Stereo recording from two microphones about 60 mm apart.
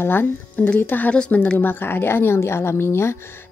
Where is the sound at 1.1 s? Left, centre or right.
Centre.